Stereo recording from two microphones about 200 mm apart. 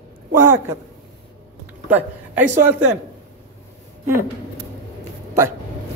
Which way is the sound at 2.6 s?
10° right (ahead or behind).